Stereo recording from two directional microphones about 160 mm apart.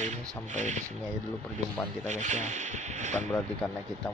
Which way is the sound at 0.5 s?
50° right (ahead or behind).